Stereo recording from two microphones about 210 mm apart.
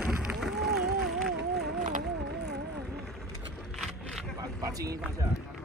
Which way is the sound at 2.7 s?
Centre (ahead or behind).